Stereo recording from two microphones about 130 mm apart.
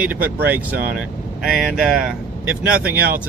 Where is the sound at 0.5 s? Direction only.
15° right (ahead or behind).